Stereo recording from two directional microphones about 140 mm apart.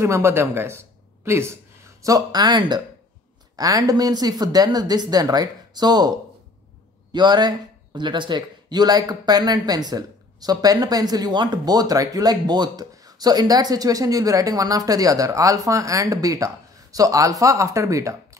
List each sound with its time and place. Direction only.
0.0 s a man's voice: 20° right (ahead or behind)